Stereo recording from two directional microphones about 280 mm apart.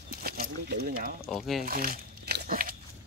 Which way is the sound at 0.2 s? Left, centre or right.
Right.